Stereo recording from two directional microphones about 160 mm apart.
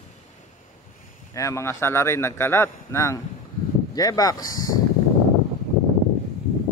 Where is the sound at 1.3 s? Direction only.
20° left (ahead or behind).